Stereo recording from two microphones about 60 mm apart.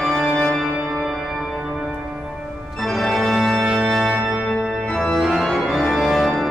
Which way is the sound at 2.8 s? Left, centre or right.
Centre.